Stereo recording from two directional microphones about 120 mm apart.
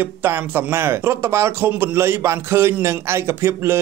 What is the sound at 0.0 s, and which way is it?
Speech, 15° right (ahead or behind).